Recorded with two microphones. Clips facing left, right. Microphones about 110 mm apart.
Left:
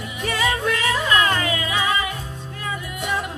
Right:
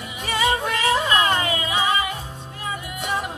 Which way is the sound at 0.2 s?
25° right (ahead or behind).